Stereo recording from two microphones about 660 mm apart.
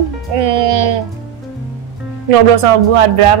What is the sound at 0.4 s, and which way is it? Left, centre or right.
Music, right.